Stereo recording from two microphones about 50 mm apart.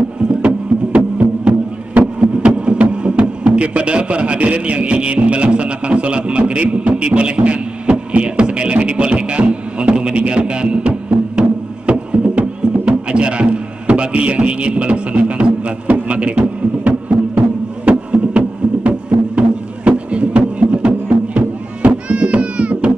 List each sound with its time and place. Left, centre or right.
0.4 s music: right
2.1 s a sound: right
17.8 s music: right